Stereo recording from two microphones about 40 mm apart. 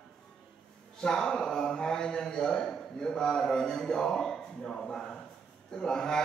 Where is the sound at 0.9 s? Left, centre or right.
Centre.